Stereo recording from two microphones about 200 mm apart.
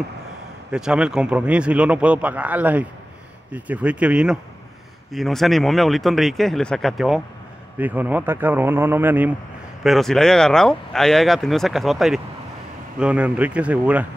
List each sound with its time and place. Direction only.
0.7 s a man's voice: 5° right (ahead or behind)
9.8 s a man's voice: centre (ahead or behind)